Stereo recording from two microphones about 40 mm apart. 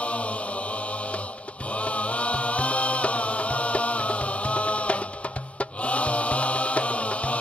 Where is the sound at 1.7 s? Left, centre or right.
Left.